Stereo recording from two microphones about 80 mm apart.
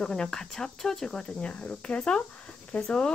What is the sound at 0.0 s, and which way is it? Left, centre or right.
Speech, centre.